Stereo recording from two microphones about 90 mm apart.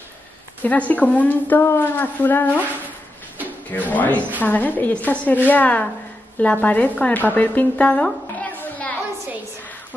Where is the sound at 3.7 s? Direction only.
20° left (ahead or behind).